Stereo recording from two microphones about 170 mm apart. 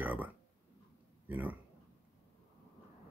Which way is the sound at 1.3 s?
10° right (ahead or behind).